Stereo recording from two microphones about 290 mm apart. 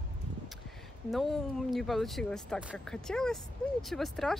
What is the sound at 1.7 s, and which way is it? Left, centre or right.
Speech, centre.